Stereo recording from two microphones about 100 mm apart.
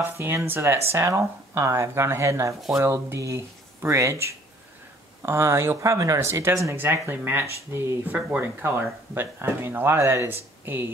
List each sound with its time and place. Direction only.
0.0 s speech: 25° right (ahead or behind)